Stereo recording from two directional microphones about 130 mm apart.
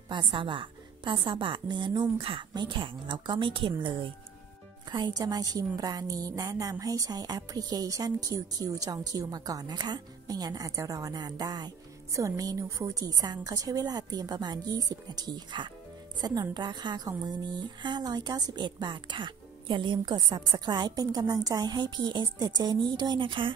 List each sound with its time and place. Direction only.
0.1 s a woman's voice: 40° right (ahead or behind)